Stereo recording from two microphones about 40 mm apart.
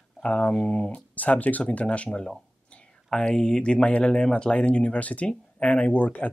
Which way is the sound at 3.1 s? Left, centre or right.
Centre.